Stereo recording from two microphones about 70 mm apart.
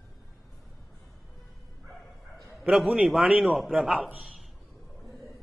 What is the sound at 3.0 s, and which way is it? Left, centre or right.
A man's voice, centre.